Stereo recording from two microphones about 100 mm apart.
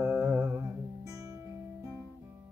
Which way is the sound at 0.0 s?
25° right (ahead or behind).